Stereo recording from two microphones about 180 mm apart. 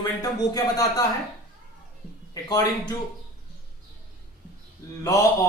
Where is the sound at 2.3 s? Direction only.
20° left (ahead or behind).